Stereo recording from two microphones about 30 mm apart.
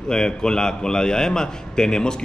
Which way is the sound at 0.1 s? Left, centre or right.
Left.